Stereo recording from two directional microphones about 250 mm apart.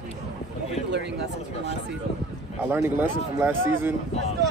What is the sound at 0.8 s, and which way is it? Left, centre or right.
Speech, right.